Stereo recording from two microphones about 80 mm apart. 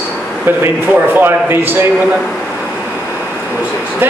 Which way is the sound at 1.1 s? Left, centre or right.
Right.